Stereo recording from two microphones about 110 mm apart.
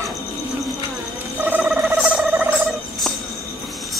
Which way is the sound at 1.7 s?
5° right (ahead or behind).